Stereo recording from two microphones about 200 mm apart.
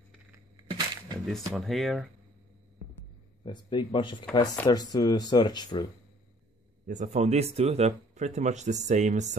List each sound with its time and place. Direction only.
0.7 s a sound: 20° right (ahead or behind)
1.2 s speech: centre (ahead or behind)
3.4 s speech: 25° left (ahead or behind)
6.9 s speech: 35° right (ahead or behind)